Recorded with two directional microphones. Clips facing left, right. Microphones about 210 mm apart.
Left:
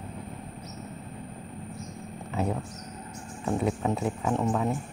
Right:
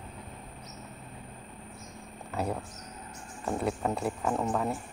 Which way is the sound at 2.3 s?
Centre (ahead or behind).